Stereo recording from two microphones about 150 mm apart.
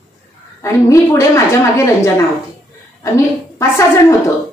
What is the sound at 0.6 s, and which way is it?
A woman's voice, 20° left (ahead or behind).